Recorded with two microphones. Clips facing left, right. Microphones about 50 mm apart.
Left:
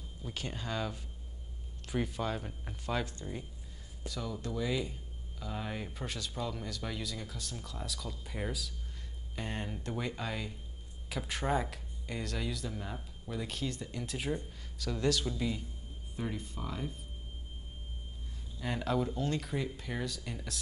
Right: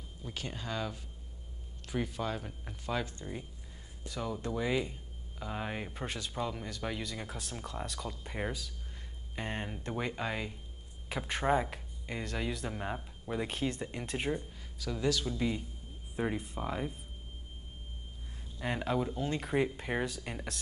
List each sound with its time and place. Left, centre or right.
0.2 s speech: centre
4.1 s speech: right
7.2 s speech: right
14.3 s speech: centre
15.3 s speech: centre
18.6 s speech: centre
19.4 s speech: right